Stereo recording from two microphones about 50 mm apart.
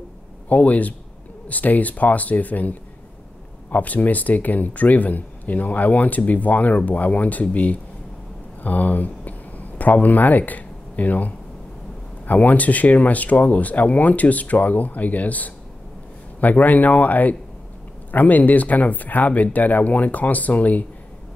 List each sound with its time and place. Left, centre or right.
0.5 s speech: left